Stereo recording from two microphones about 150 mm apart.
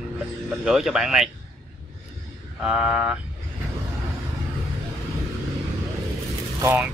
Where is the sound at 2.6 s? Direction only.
5° right (ahead or behind).